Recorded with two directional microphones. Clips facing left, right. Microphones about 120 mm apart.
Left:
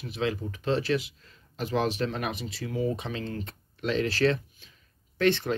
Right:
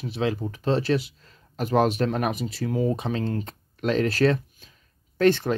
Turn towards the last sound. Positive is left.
turn(degrees=-40)  # may be behind; listen again after turning